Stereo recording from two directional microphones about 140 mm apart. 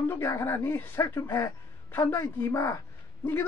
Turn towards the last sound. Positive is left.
turn(degrees=15)  # may be behind; listen again after turning